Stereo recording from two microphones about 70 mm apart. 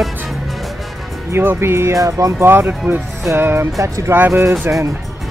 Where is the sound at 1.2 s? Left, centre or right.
Right.